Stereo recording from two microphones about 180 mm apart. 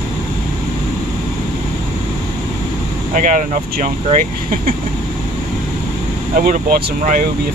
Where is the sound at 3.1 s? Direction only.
45° right (ahead or behind).